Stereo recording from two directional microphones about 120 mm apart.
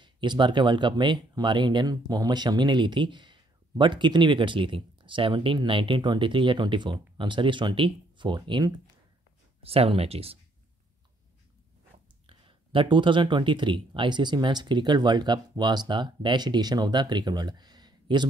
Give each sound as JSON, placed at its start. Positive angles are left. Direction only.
{"t": 0.0, "sound": "speech", "side_deg": -40}
{"t": 9.6, "sound": "speech", "side_deg": -55}
{"t": 12.3, "sound": "speech", "side_deg": -45}